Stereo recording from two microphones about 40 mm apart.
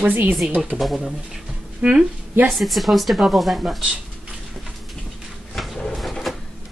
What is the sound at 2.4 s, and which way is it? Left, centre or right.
A woman's voice, centre.